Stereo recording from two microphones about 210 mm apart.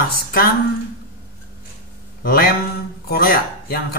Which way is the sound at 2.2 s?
45° left (ahead or behind).